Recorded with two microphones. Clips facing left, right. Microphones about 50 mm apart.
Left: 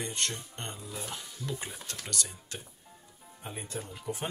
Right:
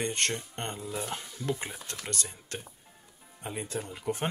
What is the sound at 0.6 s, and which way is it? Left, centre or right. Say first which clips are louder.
Speech: right 5 dB; right.